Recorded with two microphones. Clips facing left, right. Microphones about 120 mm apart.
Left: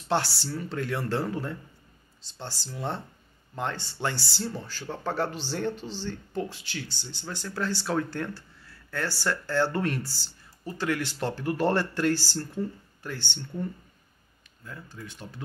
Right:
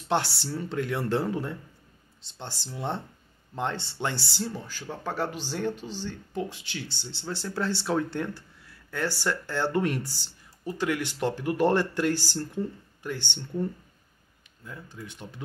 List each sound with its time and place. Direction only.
0.1 s speech: 20° right (ahead or behind)
14.6 s speech: 20° right (ahead or behind)